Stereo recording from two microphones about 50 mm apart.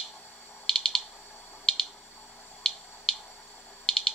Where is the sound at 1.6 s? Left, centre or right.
Centre.